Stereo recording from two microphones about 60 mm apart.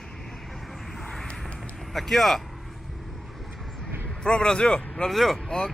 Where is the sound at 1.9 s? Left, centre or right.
Centre.